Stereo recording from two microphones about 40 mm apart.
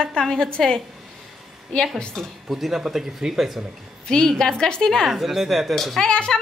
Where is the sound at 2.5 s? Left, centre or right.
Centre.